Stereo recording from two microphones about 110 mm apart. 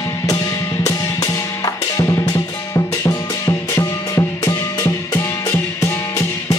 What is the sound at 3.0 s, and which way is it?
Music, 30° left (ahead or behind).